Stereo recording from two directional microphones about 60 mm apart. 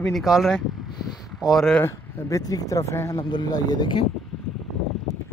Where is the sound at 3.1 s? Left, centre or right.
Left.